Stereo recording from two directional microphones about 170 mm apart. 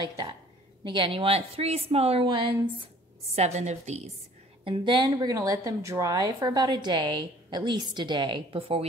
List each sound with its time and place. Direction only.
0.0 s a sound: 30° right (ahead or behind)
0.8 s a woman's voice: 30° right (ahead or behind)
3.3 s a woman's voice: 40° right (ahead or behind)
4.6 s a woman's voice: 30° right (ahead or behind)